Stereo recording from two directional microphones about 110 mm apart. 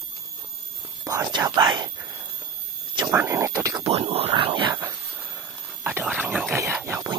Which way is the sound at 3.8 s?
60° right (ahead or behind).